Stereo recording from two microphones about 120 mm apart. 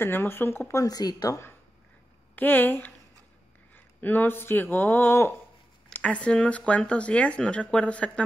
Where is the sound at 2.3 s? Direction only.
15° left (ahead or behind).